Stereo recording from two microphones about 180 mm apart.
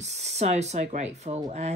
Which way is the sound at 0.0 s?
35° right (ahead or behind).